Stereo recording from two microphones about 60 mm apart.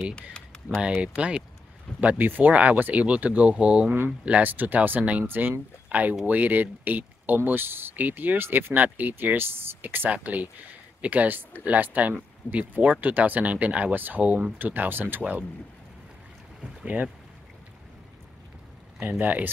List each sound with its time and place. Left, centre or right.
0.1 s typing: centre
1.0 s speech: centre
16.8 s speech: right
19.0 s speech: right